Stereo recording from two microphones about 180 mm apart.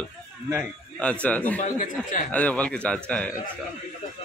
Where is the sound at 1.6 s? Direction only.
45° left (ahead or behind).